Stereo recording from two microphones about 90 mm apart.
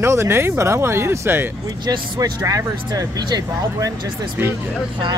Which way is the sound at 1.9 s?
40° right (ahead or behind).